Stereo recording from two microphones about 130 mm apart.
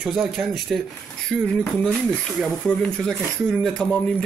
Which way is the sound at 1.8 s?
5° left (ahead or behind).